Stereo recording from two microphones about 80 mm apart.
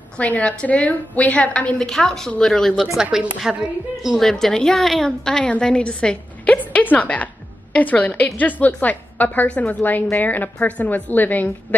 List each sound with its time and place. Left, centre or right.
0.2 s a woman's voice: centre
3.0 s a woman's voice: centre; by 11.5 s left